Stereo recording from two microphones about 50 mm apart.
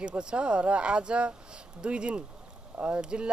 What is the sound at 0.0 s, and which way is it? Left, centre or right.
Speech, centre.